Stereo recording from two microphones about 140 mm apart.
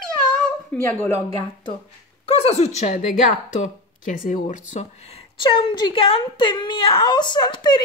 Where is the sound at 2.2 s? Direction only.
45° left (ahead or behind).